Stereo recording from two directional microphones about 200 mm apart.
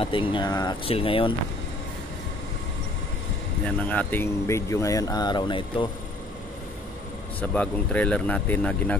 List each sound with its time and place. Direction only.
0.0 s speech: 25° left (ahead or behind)
3.6 s speech: 5° left (ahead or behind); by 5.9 s 25° left (ahead or behind)
7.3 s speech: 5° left (ahead or behind)